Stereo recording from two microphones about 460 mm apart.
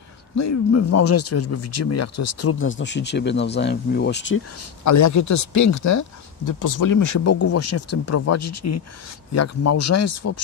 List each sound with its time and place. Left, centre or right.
0.4 s speech: left
4.8 s speech: left